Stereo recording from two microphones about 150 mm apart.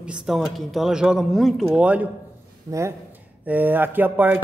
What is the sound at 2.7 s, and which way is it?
A man's voice, 20° right (ahead or behind).